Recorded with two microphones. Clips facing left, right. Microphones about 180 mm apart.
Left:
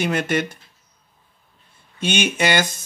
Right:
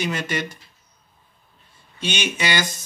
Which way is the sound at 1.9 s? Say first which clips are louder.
Left 5 dB; 50° left (ahead or behind).